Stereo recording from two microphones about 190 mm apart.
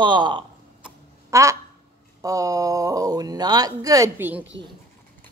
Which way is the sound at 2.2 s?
20° right (ahead or behind).